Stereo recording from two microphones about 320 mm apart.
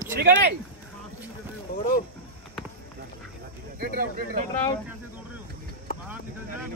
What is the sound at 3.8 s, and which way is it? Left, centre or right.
Speech, right.